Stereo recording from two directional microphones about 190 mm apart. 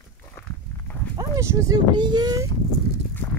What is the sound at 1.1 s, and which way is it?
Speech, 15° right (ahead or behind).